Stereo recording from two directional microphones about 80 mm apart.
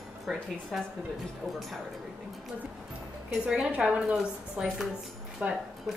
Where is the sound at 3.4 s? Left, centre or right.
Centre.